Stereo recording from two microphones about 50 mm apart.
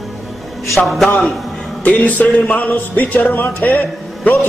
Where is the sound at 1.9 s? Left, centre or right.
Left.